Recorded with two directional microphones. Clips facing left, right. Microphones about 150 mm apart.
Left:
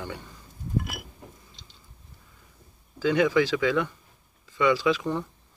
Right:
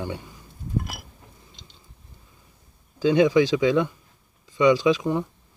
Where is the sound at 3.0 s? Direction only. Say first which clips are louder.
Right 4 dB; 20° right (ahead or behind).